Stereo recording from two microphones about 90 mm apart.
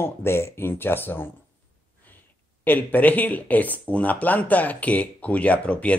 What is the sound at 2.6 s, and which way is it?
Speech, 20° left (ahead or behind).